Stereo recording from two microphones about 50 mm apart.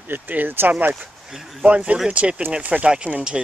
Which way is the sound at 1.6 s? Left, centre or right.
Right.